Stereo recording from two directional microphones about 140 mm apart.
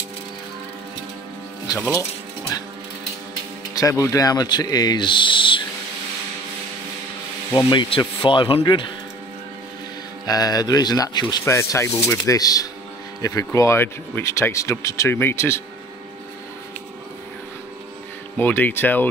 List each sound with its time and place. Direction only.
2.0 s speech: 25° left (ahead or behind)
3.7 s rub: 20° left (ahead or behind)
7.5 s speech: 35° left (ahead or behind)
10.2 s rub: 25° left (ahead or behind)
18.4 s speech: 15° left (ahead or behind)